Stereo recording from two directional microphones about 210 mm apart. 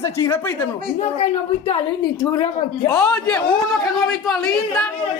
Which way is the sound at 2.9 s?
5° left (ahead or behind).